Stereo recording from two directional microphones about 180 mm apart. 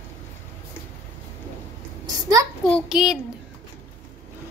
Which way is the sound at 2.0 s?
20° right (ahead or behind).